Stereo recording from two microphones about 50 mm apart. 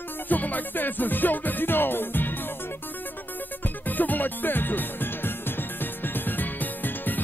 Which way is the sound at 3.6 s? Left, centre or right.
Left.